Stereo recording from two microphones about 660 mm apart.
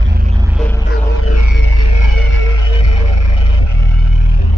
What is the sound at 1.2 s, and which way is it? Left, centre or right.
Music, left.